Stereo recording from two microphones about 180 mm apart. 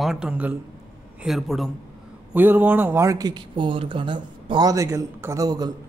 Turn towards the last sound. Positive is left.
turn(degrees=-20)  # may be behind; listen again after turning